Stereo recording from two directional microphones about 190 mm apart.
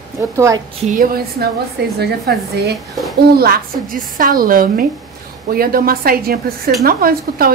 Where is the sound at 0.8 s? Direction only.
45° right (ahead or behind).